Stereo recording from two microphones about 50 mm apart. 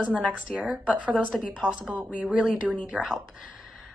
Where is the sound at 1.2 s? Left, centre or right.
Left.